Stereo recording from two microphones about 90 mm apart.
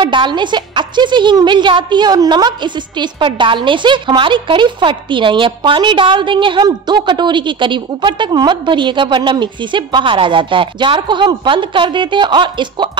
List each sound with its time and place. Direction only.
0.0 s a woman's voice: 60° right (ahead or behind)